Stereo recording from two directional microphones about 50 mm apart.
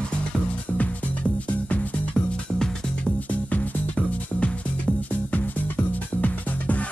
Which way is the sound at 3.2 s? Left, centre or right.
Left.